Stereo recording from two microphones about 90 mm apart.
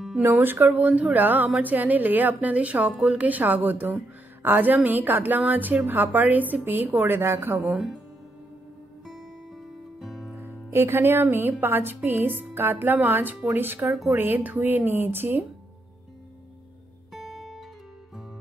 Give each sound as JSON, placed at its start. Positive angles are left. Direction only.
{"t": 0.2, "sound": "speech", "side_deg": -25}
{"t": 7.6, "sound": "speech", "side_deg": -5}
{"t": 9.0, "sound": "music", "side_deg": 0}
{"t": 10.4, "sound": "speech", "side_deg": -25}
{"t": 17.1, "sound": "guitar", "side_deg": -5}